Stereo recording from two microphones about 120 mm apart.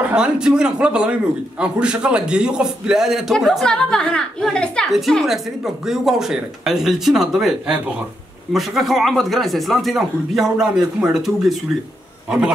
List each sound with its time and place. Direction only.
0.0 s a man's voice: 5° right (ahead or behind)